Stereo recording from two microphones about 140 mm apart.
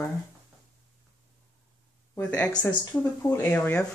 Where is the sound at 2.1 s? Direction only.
10° left (ahead or behind).